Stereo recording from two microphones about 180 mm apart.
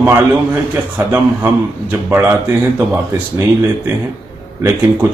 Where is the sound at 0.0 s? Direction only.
15° right (ahead or behind).